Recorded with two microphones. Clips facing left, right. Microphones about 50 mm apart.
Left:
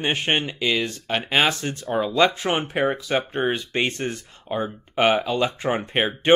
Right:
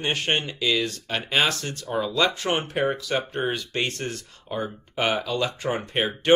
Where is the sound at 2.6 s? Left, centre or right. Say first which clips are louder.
Left 2 dB; left.